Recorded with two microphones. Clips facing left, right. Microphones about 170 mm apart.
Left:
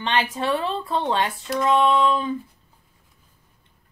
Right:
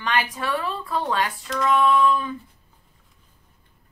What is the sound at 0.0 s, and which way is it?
A woman's voice, 25° left (ahead or behind).